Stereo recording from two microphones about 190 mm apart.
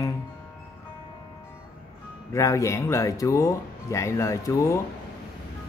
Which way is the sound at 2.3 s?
15° left (ahead or behind).